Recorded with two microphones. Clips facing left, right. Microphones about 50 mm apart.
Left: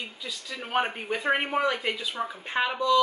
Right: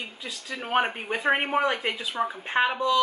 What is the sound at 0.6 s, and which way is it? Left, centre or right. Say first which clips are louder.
Speech: right 3 dB; centre.